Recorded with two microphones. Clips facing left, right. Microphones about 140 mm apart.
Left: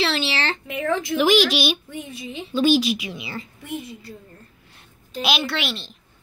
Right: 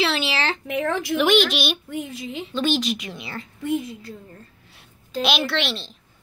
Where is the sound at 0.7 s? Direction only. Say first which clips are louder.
Left 2 dB; 70° right (ahead or behind).